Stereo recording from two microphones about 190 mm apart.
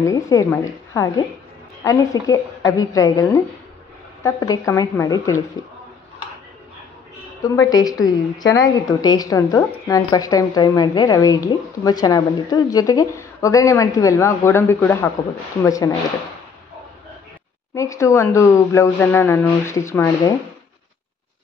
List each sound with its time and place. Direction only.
0.0 s speech: 15° left (ahead or behind)
7.4 s a woman's voice: 20° left (ahead or behind)
17.7 s speech: 15° left (ahead or behind)